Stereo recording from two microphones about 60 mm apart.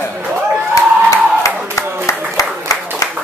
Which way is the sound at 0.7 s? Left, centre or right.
Left.